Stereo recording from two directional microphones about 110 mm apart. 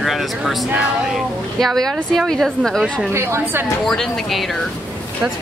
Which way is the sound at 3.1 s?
25° right (ahead or behind).